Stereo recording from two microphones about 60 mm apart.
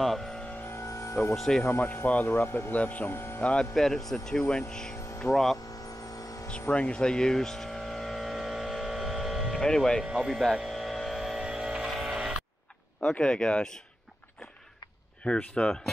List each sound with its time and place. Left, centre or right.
0.0 s vehicle: centre
0.7 s music: left
1.3 s speech: centre
1.6 s speech: left
3.1 s speech: left
3.7 s speech: centre
5.9 s vehicle: left
6.7 s vehicle: centre
9.6 s speech: centre
10.1 s speech: centre
10.6 s a sound: centre
12.1 s vehicle: centre
13.0 s speech: centre
15.2 s speech: centre